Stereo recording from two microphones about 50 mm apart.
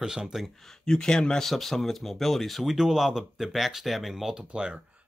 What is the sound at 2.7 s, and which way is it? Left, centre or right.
Speech, centre.